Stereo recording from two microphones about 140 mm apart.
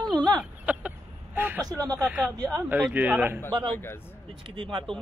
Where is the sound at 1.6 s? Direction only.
25° right (ahead or behind).